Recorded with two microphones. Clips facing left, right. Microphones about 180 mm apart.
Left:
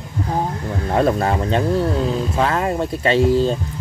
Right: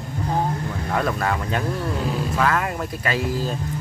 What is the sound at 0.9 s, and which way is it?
Speech, 30° left (ahead or behind).